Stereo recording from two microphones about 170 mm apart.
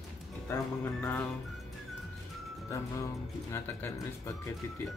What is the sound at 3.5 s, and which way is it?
Speech, 15° left (ahead or behind).